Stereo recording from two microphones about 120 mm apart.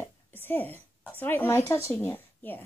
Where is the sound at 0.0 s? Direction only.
15° left (ahead or behind).